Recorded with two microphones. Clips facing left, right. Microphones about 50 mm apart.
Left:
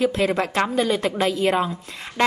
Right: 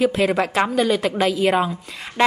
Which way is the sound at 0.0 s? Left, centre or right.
Centre.